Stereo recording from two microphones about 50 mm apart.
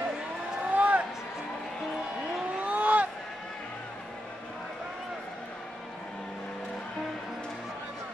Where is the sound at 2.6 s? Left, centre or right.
Right.